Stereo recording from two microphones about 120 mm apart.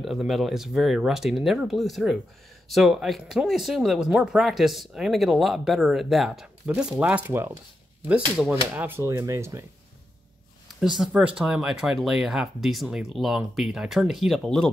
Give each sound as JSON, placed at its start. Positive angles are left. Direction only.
{"t": 0.0, "sound": "speech", "side_deg": 0}
{"t": 10.8, "sound": "speech", "side_deg": -5}